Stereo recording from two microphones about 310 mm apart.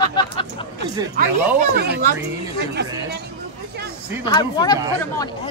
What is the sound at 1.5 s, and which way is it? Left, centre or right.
Speech, right.